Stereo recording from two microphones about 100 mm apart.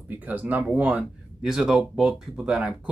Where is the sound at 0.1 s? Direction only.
15° right (ahead or behind).